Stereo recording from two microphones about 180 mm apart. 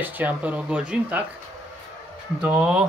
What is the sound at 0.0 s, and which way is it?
Speech, 10° right (ahead or behind).